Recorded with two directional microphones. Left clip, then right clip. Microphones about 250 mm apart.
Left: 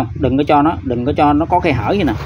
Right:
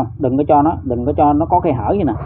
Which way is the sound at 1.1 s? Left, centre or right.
Left.